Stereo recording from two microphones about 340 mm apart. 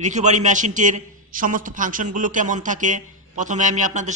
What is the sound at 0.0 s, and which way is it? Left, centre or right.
A man's voice, right.